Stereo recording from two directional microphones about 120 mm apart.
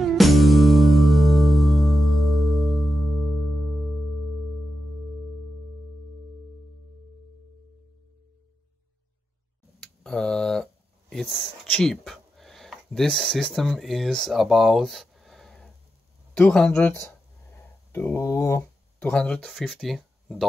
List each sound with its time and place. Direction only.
0.0 s music: centre (ahead or behind)
9.8 s a sound: 5° left (ahead or behind)
16.3 s speech: 10° left (ahead or behind)
17.9 s speech: 20° left (ahead or behind)
19.1 s speech: 10° left (ahead or behind)